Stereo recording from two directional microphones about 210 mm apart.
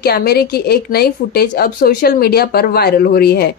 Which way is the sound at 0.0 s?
50° left (ahead or behind).